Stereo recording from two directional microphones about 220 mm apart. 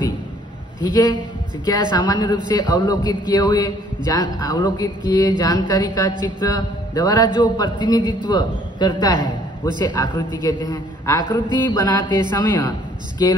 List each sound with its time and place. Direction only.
0.8 s a man's voice: 20° left (ahead or behind)